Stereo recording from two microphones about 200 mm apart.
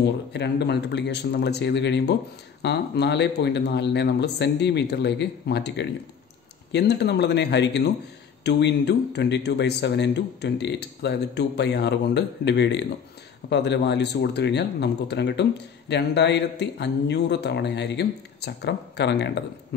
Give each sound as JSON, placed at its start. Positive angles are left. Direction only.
{"t": 0.3, "sound": "speech", "side_deg": 55}